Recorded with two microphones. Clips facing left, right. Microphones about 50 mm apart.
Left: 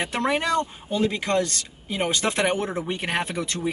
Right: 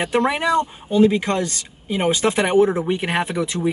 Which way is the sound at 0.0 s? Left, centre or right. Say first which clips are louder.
Right 5 dB; centre.